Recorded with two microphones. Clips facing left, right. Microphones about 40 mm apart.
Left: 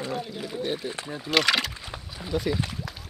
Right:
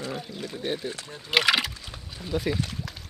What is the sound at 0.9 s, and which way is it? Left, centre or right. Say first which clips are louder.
Speech: left 5 dB; left.